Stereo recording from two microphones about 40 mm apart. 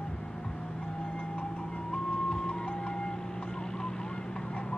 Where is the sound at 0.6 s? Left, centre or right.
Centre.